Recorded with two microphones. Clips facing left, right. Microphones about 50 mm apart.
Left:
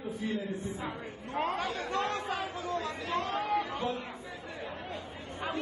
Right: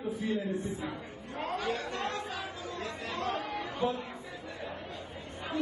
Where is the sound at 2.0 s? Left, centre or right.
Left.